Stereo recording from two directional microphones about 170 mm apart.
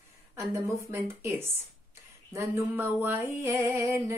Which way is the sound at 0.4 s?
15° right (ahead or behind).